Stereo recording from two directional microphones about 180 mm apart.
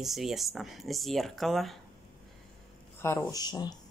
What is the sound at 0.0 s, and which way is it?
Speech, centre (ahead or behind).